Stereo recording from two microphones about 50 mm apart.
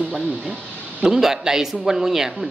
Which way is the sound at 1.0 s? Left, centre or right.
Centre.